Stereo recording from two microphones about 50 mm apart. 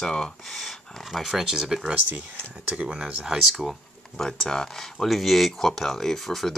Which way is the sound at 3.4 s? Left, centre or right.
Centre.